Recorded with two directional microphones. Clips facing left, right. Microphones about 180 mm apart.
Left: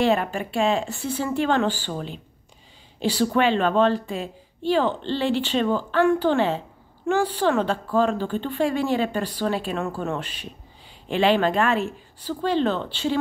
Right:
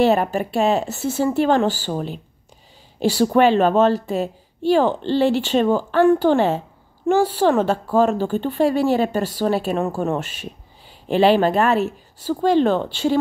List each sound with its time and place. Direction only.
0.0 s speech: 40° right (ahead or behind)
3.1 s speech: 45° right (ahead or behind)